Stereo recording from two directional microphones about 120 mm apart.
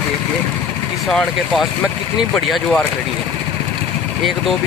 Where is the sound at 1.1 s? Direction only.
Centre (ahead or behind).